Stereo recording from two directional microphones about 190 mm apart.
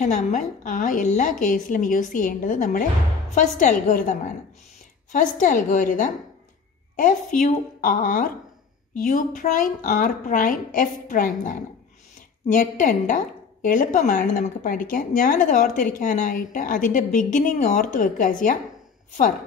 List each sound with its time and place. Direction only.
0.0 s a woman's voice: 40° left (ahead or behind)